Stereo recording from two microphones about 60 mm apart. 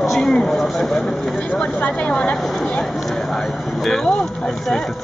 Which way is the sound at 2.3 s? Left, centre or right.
Centre.